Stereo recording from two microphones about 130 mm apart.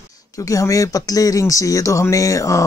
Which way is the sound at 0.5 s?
25° left (ahead or behind).